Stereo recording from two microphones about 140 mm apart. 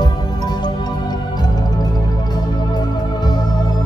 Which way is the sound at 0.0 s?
30° left (ahead or behind).